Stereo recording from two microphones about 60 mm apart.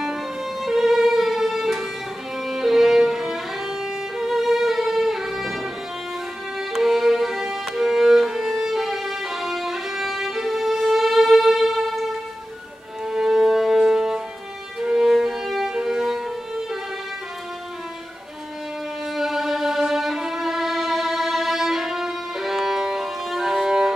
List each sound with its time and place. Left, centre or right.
0.0 s music: centre
2.4 s violin: centre
6.7 s violin: centre
13.0 s music: centre
14.8 s violin: centre
15.7 s music: centre
19.1 s music: centre